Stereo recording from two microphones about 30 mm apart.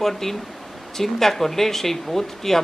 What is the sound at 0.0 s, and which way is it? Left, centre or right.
Speech, centre.